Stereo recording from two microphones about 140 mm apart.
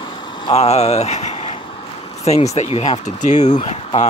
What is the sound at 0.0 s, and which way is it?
Vehicle, 35° left (ahead or behind).